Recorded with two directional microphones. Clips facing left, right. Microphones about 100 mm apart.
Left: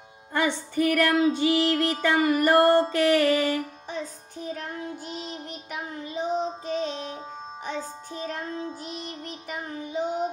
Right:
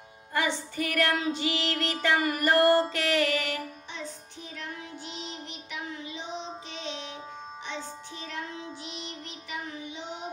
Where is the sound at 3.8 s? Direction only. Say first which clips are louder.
Left 6 dB; 45° left (ahead or behind).